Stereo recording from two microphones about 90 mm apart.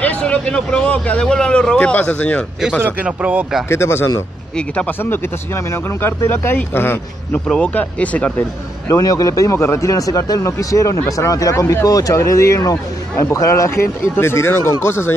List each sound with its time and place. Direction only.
0.0 s speech: 15° left (ahead or behind)
3.1 s speech: 15° right (ahead or behind)
3.6 s speech: 30° left (ahead or behind)
6.0 s speech: 25° left (ahead or behind)
7.4 s speech: 15° left (ahead or behind)
8.8 s a man's voice: 40° left (ahead or behind)